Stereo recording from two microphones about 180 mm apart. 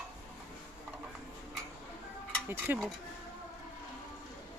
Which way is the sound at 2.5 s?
10° right (ahead or behind).